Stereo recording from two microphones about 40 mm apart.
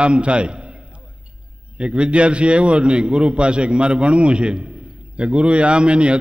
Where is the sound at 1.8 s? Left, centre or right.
Right.